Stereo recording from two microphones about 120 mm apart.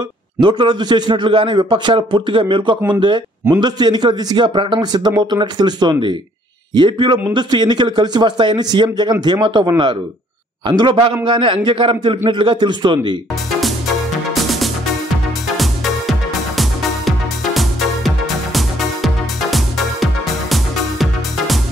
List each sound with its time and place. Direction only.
0.4 s a man's voice: 40° right (ahead or behind)
13.5 s music: centre (ahead or behind)